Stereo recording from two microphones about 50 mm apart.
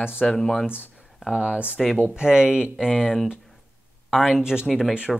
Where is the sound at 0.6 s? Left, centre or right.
Right.